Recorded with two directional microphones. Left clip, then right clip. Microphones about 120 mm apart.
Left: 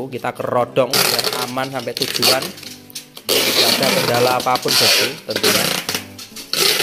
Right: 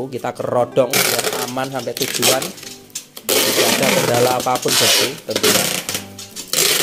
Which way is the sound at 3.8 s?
10° right (ahead or behind).